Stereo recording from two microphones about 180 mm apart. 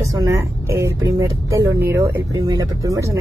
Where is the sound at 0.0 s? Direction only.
15° right (ahead or behind).